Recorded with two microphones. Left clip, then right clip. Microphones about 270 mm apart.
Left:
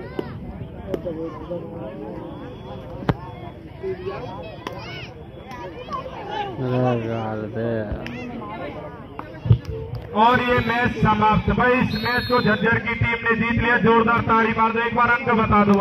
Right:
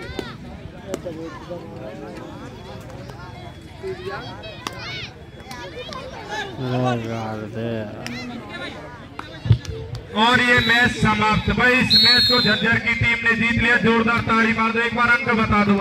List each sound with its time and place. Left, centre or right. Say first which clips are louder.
6.7 s speech: left 1 dB; right
9.5 s basketball bounce: left 1 dB; right
10.1 s a man's voice: right 1 dB; right